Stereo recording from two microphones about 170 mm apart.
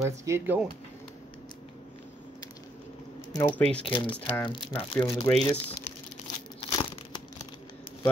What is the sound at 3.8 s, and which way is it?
Speech, 30° left (ahead or behind).